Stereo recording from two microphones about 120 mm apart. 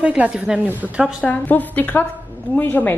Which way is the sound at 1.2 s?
10° left (ahead or behind).